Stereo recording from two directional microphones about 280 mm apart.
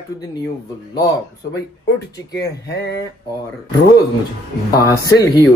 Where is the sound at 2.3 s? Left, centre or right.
Left.